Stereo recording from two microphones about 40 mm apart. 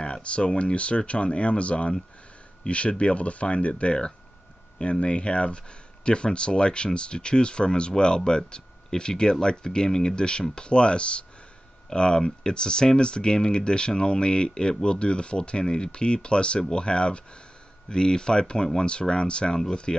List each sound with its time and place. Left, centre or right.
0.0 s speech: left